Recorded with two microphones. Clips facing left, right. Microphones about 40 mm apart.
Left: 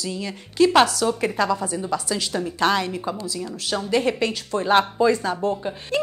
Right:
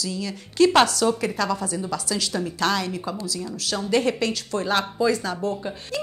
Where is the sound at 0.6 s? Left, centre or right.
Centre.